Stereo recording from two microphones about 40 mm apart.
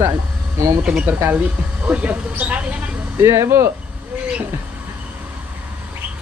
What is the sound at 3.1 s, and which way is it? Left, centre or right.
Speech, right.